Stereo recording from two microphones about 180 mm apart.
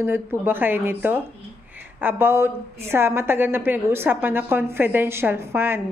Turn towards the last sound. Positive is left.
turn(degrees=-15)  # may be behind; listen again after turning